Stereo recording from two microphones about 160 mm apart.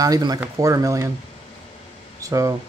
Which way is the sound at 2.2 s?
20° right (ahead or behind).